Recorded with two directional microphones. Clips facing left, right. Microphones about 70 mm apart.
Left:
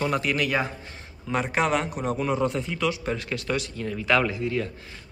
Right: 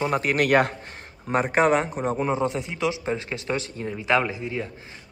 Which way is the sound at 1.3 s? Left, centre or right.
Right.